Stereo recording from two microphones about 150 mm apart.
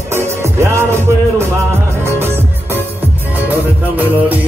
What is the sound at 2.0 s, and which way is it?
Music, 15° right (ahead or behind).